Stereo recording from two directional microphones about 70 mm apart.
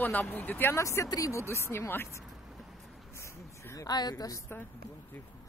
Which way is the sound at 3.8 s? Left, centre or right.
Left.